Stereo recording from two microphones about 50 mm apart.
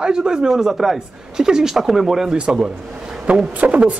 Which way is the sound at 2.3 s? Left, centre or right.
Centre.